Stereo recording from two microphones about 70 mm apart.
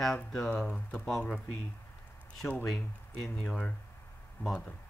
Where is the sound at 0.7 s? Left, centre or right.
Left.